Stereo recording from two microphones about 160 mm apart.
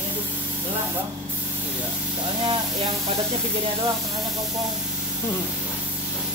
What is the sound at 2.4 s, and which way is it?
Speech, 35° right (ahead or behind).